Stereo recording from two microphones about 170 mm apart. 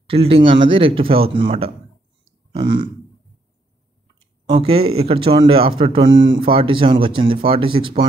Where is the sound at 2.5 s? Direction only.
90° right.